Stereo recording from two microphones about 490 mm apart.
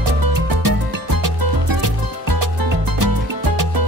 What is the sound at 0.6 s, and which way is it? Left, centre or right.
Music, right.